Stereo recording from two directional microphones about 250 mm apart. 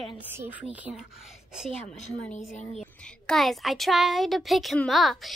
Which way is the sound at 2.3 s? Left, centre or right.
Left.